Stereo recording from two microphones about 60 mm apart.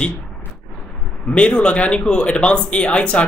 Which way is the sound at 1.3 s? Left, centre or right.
Centre.